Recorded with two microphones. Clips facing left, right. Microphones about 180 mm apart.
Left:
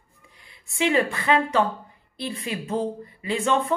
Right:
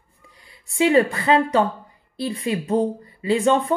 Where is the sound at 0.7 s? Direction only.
35° right (ahead or behind).